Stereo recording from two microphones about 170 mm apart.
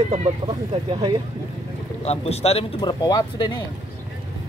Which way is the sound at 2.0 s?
40° left (ahead or behind).